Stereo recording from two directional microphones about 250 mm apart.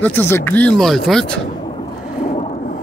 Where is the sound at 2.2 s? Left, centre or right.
Left.